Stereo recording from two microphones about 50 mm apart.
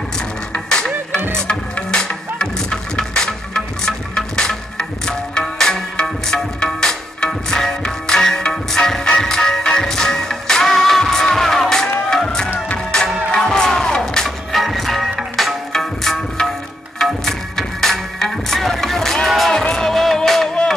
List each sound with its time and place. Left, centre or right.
0.7 s music: centre